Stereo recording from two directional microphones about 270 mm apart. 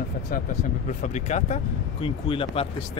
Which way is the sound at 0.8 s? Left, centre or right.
Left.